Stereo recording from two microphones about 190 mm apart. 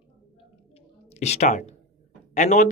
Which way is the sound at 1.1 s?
35° left (ahead or behind).